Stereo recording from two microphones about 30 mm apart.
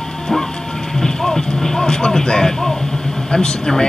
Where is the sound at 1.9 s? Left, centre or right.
Left.